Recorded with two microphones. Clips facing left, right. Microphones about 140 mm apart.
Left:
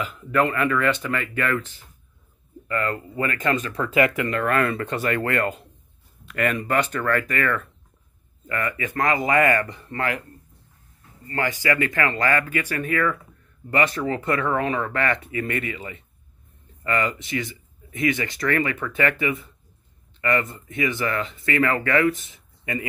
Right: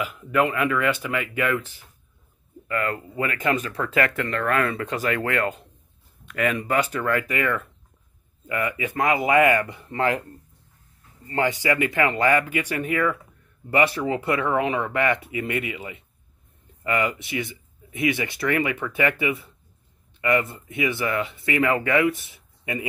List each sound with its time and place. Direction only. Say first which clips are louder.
0.0 s speech: even; 5° right (ahead or behind)
3.8 s speech: left 4 dB; 5° left (ahead or behind); by 10.0 s 15° right (ahead or behind)
11.2 s speech: right 1 dB; 20° right (ahead or behind)